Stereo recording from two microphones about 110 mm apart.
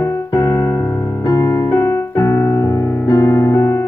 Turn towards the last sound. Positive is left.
turn(degrees=25)  # may be behind; listen again after turning